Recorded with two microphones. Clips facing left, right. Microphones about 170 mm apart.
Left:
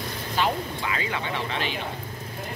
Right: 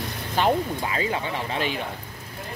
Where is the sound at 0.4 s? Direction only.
50° right (ahead or behind).